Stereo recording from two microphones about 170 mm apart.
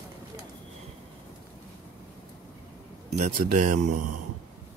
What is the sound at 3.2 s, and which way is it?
Speech, 45° right (ahead or behind).